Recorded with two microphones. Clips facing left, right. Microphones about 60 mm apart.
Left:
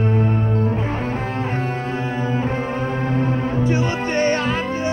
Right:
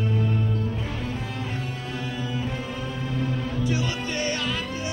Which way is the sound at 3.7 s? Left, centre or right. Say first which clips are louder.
Left 7 dB; left.